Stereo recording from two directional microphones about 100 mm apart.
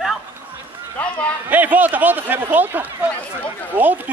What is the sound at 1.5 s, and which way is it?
Speech, 15° right (ahead or behind).